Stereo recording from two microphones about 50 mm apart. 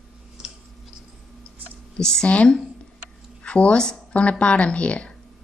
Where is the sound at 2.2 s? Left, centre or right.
Left.